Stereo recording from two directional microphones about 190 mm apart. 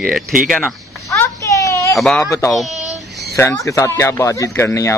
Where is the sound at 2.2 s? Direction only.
15° left (ahead or behind).